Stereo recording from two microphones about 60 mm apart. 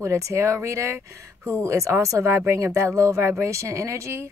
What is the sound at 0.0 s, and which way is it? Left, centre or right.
Speech, right.